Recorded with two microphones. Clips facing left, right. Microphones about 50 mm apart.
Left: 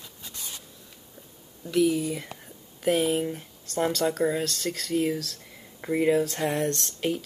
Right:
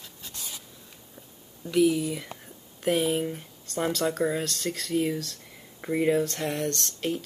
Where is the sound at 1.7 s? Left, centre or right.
Centre.